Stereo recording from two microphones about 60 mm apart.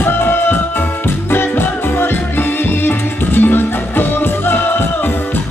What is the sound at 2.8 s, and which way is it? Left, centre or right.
Music, left.